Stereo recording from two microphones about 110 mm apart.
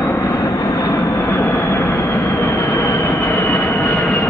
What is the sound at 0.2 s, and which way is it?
Vehicle, 35° left (ahead or behind).